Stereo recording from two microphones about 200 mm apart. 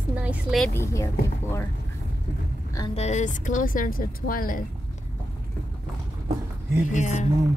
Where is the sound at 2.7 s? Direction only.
25° left (ahead or behind); by 4.6 s 45° left (ahead or behind).